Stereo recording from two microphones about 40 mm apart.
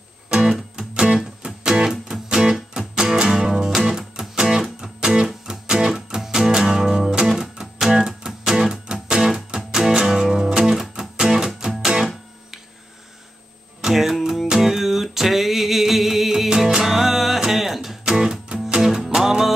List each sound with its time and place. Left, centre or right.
0.3 s music: right
8.3 s music: centre
13.7 s music: centre